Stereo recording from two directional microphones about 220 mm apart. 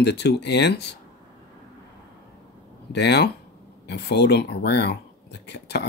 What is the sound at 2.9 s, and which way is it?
Speech, 50° left (ahead or behind).